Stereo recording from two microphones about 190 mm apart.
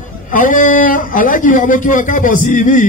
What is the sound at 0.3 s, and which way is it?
A man's voice, 45° left (ahead or behind).